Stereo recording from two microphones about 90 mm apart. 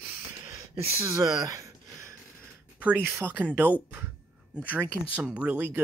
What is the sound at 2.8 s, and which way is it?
Speech, 20° right (ahead or behind).